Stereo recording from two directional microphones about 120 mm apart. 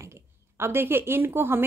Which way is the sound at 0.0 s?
20° right (ahead or behind).